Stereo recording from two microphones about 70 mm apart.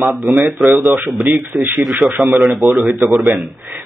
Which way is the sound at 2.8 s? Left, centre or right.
Centre.